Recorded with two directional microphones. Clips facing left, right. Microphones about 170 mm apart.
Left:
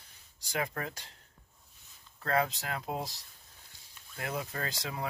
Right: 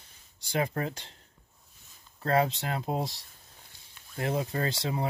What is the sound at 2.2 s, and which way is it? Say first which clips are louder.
Speech: right 4 dB; 30° right (ahead or behind).